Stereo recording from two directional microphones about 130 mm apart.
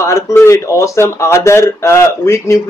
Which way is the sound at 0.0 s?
20° left (ahead or behind).